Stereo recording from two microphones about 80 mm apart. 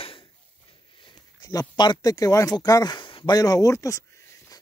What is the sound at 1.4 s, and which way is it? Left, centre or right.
Speech, left.